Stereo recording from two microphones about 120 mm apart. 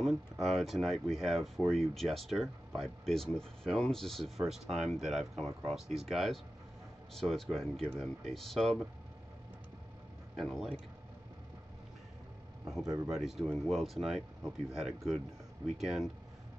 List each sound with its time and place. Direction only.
0.0 s speech: centre (ahead or behind)
10.3 s speech: centre (ahead or behind)
12.8 s speech: 30° right (ahead or behind)
13.1 s speech: centre (ahead or behind)